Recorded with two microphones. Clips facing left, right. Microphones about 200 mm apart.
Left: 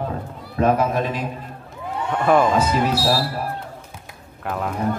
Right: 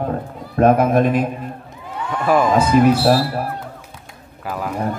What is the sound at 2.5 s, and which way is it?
Speech, 55° right (ahead or behind).